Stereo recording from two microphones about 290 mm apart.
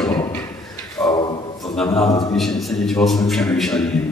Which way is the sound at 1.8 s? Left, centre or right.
Centre.